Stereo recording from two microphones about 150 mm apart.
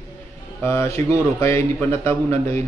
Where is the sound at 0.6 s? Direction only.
20° left (ahead or behind).